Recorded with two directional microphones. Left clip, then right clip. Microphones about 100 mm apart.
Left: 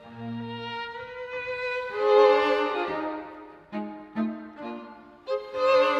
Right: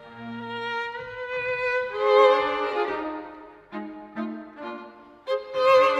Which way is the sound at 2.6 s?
50° right (ahead or behind).